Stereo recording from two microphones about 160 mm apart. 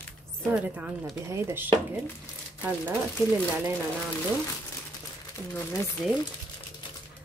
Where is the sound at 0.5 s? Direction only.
10° right (ahead or behind).